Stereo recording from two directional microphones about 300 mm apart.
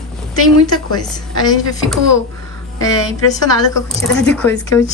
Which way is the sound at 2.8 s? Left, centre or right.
Centre.